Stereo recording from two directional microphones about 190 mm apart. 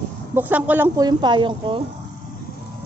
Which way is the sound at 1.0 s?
20° right (ahead or behind).